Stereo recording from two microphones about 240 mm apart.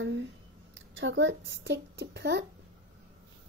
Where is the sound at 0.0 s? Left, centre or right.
Right.